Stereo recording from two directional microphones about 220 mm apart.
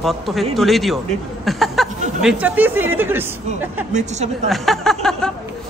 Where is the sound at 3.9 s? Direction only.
30° right (ahead or behind).